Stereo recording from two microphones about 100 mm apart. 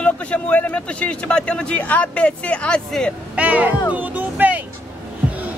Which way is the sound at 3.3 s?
15° right (ahead or behind).